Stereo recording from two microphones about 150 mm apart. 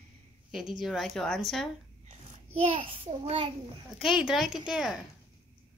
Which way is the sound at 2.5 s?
40° right (ahead or behind).